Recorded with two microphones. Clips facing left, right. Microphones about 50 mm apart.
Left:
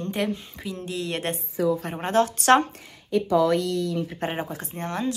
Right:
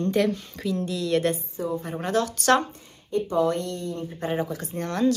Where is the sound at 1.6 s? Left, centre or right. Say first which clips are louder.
Left 9 dB; left.